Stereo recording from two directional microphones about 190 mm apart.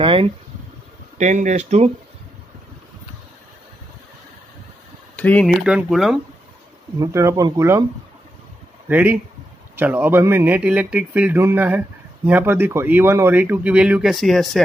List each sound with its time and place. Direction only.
0.0 s speech: 25° right (ahead or behind)
1.1 s speech: 40° right (ahead or behind)
5.1 s speech: 10° left (ahead or behind)
5.6 s speech: 5° right (ahead or behind)
7.0 s speech: 15° right (ahead or behind)
8.8 s speech: 10° right (ahead or behind)